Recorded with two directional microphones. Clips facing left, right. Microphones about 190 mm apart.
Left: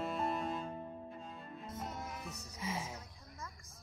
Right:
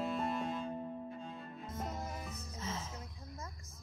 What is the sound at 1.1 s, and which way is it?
Cello, centre (ahead or behind).